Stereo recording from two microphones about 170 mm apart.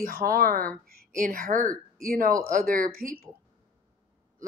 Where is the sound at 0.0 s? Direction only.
55° right (ahead or behind).